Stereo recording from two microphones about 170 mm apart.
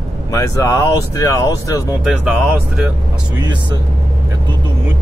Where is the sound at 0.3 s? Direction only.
20° left (ahead or behind).